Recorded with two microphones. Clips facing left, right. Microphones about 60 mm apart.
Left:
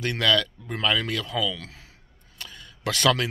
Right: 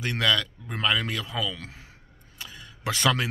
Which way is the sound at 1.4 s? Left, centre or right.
Right.